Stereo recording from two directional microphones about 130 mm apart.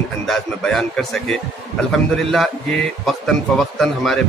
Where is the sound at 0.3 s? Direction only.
5° left (ahead or behind).